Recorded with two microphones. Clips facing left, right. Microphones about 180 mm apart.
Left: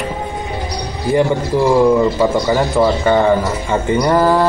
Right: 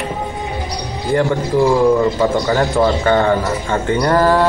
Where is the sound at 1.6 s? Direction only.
20° left (ahead or behind).